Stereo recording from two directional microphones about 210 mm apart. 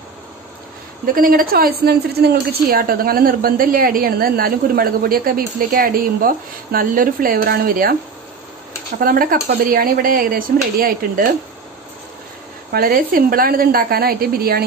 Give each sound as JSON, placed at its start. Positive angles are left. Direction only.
{"t": 1.0, "sound": "a woman's voice", "side_deg": -40}
{"t": 12.7, "sound": "a woman's voice", "side_deg": -45}